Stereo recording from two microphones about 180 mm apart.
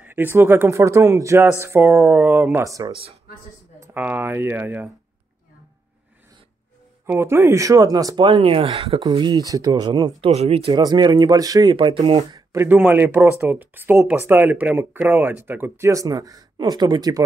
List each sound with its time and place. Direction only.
0.0 s speech: 10° right (ahead or behind)
7.1 s speech: 15° right (ahead or behind)
10.3 s speech: 35° right (ahead or behind)
10.7 s speech: 20° right (ahead or behind)
12.6 s speech: 10° right (ahead or behind)